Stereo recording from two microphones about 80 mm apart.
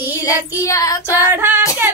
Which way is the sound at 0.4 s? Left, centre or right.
Right.